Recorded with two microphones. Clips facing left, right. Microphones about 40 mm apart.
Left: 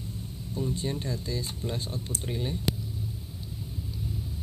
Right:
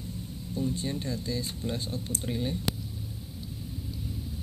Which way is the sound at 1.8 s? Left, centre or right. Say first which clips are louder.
Even; left.